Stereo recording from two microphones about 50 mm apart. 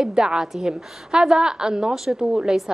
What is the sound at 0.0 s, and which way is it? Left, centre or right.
A woman's voice, centre.